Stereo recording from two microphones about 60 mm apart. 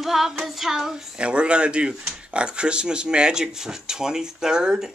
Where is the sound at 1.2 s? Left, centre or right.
Centre.